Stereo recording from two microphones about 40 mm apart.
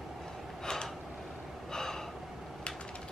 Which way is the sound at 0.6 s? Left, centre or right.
Centre.